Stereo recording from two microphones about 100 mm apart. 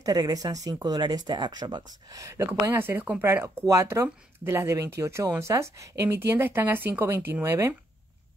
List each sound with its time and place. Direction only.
0.0 s speech: 40° right (ahead or behind)
2.1 s speech: 30° right (ahead or behind)